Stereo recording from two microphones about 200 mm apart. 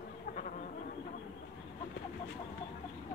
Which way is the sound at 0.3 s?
40° left (ahead or behind).